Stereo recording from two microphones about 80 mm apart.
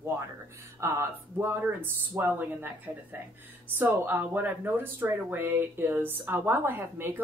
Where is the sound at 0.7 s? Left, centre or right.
Right.